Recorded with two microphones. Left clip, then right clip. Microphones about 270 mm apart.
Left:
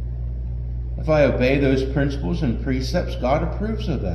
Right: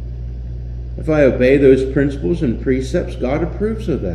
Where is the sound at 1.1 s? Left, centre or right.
Left.